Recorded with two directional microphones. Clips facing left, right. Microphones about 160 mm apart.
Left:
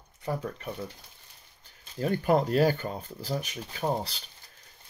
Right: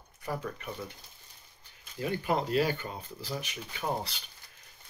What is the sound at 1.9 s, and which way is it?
Speech, 45° left (ahead or behind).